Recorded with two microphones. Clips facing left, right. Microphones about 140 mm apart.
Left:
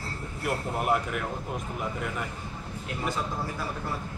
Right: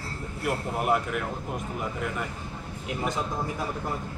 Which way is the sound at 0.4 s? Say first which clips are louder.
Right 1 dB; centre (ahead or behind).